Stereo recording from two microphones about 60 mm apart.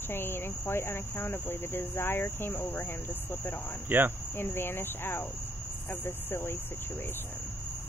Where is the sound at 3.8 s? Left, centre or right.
Right.